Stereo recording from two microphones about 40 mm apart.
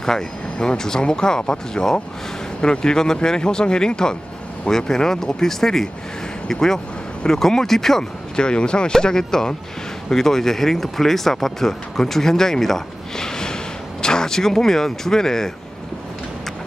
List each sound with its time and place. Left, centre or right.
0.0 s speech: centre
8.4 s speech: left